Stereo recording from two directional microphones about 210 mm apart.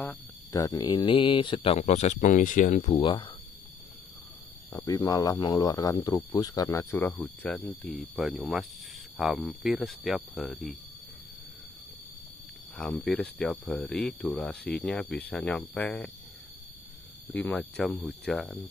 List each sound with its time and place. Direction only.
0.0 s speech: 10° left (ahead or behind)
4.7 s speech: 15° left (ahead or behind); by 10.8 s centre (ahead or behind)
12.7 s speech: 5° left (ahead or behind)
17.3 s speech: 5° left (ahead or behind)